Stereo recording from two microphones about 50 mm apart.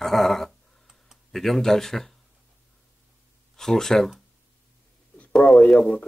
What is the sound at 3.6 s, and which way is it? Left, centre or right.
Speech, centre.